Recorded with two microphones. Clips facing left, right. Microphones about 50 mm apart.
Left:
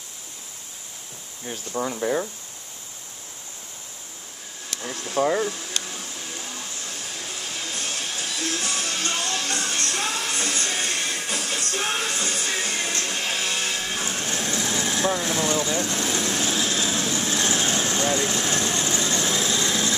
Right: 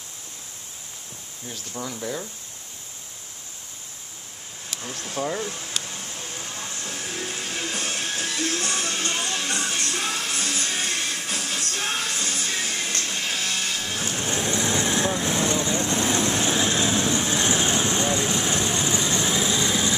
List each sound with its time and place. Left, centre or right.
1.7 s speech: left
5.1 s speech: left
6.6 s music: right
8.4 s music: right
9.6 s music: centre
14.2 s vehicle: right